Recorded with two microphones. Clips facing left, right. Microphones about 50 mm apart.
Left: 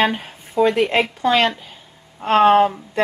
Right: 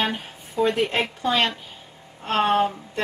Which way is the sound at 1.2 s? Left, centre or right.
Left.